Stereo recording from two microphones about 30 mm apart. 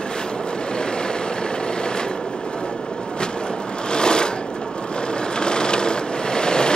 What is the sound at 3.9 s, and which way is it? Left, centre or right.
Sewing machine, left.